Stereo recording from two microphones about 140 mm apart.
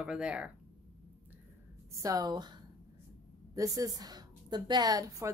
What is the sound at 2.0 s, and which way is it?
A woman's voice, 25° right (ahead or behind).